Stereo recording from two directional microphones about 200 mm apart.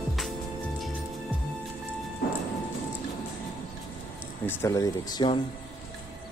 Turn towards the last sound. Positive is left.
turn(degrees=25)  # may be behind; listen again after turning